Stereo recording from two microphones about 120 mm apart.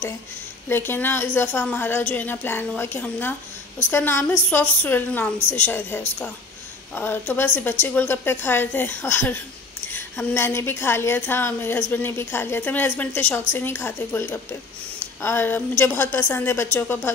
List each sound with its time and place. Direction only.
0.7 s a woman's voice: 20° left (ahead or behind)